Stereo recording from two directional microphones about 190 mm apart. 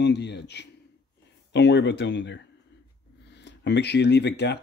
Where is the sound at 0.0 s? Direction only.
65° left (ahead or behind).